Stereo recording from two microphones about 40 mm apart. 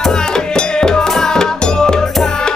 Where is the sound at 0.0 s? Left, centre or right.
Centre.